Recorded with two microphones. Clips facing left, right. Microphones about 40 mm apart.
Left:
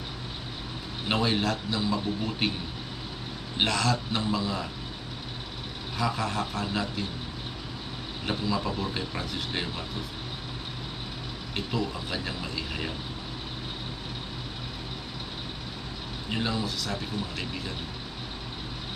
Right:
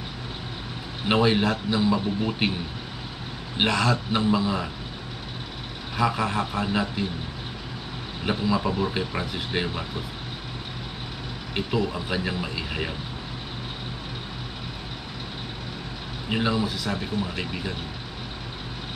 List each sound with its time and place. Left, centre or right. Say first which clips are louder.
1.0 s speech: right 5 dB; centre
3.5 s speech: right 3 dB; centre
5.9 s speech: right 5 dB; centre
8.3 s speech: right 5 dB; centre
11.5 s speech: right 5 dB; centre
16.3 s speech: right 5 dB; centre